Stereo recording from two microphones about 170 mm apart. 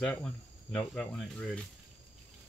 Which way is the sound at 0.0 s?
5° left (ahead or behind).